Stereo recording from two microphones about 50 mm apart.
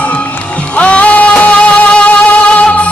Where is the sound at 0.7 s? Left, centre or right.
Left.